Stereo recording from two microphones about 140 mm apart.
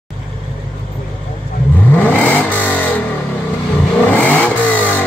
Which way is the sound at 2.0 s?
10° left (ahead or behind).